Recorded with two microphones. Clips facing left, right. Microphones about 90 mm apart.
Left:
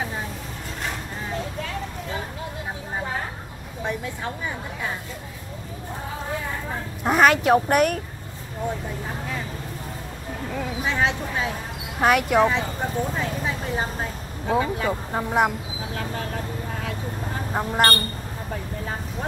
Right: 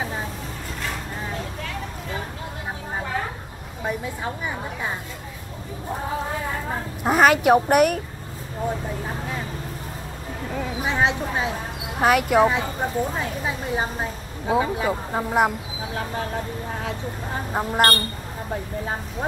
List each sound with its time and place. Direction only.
3.8 s speech: 15° right (ahead or behind)
7.0 s a woman's voice: centre (ahead or behind)
10.5 s speech: 5° right (ahead or behind)
10.9 s speech: 20° right (ahead or behind)
12.0 s a woman's voice: centre (ahead or behind)
14.4 s speech: 10° right (ahead or behind)
15.9 s speech: 30° right (ahead or behind)
17.5 s speech: 5° right (ahead or behind)